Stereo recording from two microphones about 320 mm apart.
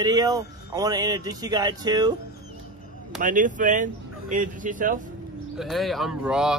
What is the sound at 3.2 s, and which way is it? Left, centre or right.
Speech, right.